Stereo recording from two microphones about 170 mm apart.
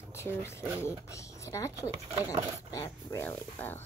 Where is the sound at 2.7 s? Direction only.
15° left (ahead or behind).